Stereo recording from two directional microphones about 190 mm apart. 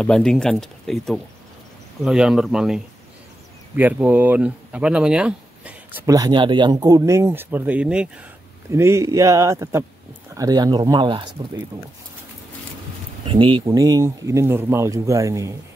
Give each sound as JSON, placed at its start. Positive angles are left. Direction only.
{"t": 0.0, "sound": "speech", "side_deg": 5}
{"t": 13.3, "sound": "speech", "side_deg": -25}